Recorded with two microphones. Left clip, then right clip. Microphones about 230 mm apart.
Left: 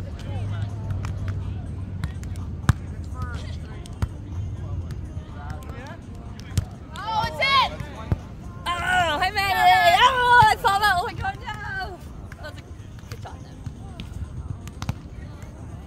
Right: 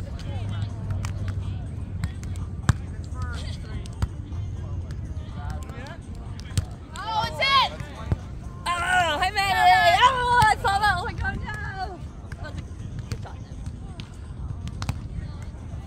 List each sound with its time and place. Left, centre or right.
2.6 s basketball bounce: centre
6.5 s basketball bounce: centre
8.6 s a sound: centre; by 10.4 s left
10.5 s hubbub: left